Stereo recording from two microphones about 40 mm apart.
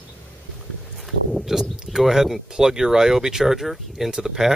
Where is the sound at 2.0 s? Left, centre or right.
Centre.